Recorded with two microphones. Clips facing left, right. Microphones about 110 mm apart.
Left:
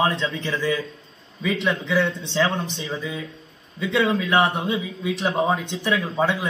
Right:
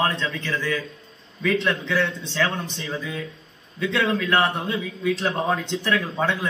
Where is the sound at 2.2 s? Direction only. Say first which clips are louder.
Left 3 dB; 20° left (ahead or behind).